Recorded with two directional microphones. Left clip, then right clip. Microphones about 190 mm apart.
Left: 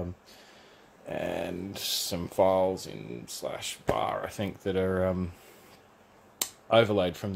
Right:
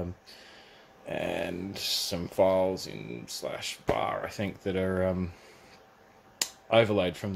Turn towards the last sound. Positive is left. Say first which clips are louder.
# even
turn(degrees=10)  # may be behind; listen again after turning